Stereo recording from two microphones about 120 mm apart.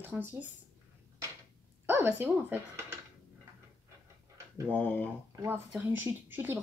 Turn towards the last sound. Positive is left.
turn(degrees=-15)  # may be behind; listen again after turning